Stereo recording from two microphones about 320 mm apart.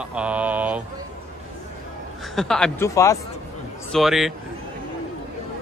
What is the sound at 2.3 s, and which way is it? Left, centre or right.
A man's voice, centre.